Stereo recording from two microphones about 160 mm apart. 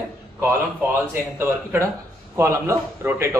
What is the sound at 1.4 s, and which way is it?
Speech, 15° right (ahead or behind).